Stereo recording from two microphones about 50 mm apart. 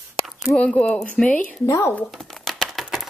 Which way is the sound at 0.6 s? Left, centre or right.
Left.